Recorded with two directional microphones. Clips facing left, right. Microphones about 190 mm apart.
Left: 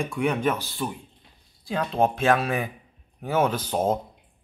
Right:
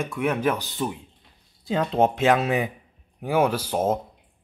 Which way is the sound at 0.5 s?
20° right (ahead or behind).